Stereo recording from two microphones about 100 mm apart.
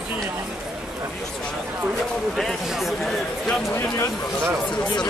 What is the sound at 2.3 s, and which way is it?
Speech, centre (ahead or behind).